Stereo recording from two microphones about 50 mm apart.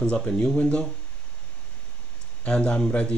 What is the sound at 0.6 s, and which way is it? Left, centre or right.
Speech, left.